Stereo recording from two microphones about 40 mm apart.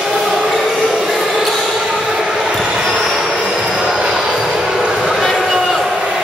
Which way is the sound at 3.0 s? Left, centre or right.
Centre.